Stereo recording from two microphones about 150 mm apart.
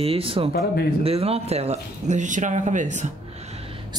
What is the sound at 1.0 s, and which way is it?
Speech, 40° right (ahead or behind).